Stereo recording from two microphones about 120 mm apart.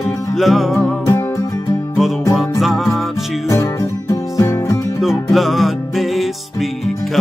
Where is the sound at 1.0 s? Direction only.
25° left (ahead or behind).